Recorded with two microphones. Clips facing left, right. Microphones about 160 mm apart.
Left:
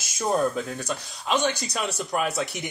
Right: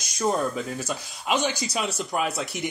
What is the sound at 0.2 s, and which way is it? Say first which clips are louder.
Speech: left 1 dB; centre (ahead or behind).